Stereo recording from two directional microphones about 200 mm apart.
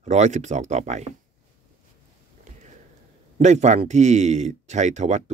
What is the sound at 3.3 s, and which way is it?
Speech, 35° right (ahead or behind).